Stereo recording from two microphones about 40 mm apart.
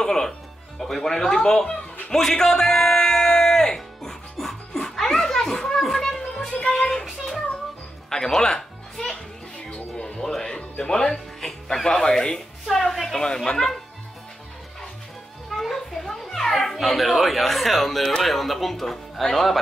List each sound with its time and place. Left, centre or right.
0.0 s music: centre
6.5 s music: left
7.1 s a sound: centre
8.1 s music: centre
9.7 s music: left
10.2 s music: centre
11.4 s speech: centre
12.6 s a woman's voice: centre
13.2 s speech: centre
15.5 s children playing: centre
16.8 s speech: centre